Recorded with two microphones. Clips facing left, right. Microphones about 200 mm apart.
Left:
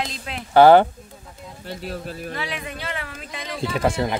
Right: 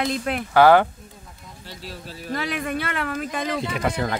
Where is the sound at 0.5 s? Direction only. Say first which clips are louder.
Left 3 dB; 30° left (ahead or behind).